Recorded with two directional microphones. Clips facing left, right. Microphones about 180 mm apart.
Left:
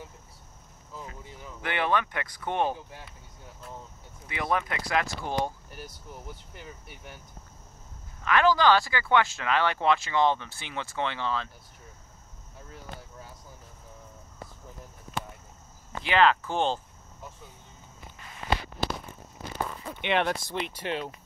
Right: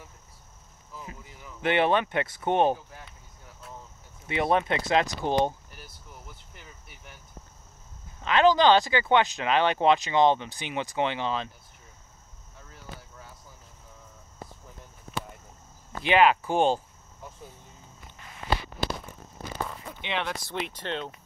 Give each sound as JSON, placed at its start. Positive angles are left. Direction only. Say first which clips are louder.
{"t": 1.6, "sound": "speech", "louder": "right 5 dB", "side_deg": -20}
{"t": 4.3, "sound": "speech", "louder": "right 5 dB", "side_deg": -25}
{"t": 8.2, "sound": "speech", "louder": "right 2 dB", "side_deg": -20}
{"t": 16.0, "sound": "speech", "louder": "right 2 dB", "side_deg": -15}
{"t": 20.0, "sound": "speech", "louder": "left 6 dB", "side_deg": 55}
{"t": 20.5, "sound": "speech", "louder": "left 1 dB", "side_deg": 0}